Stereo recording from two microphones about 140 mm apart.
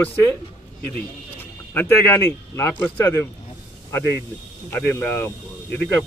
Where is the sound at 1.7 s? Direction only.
15° left (ahead or behind).